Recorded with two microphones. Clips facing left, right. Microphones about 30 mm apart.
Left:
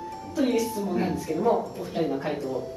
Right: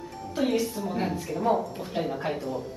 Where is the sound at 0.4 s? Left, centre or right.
Centre.